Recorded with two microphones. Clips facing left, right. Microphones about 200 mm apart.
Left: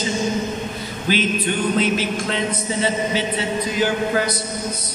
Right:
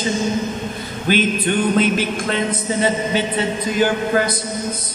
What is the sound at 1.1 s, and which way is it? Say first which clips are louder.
Chant: right 3 dB; 50° right (ahead or behind).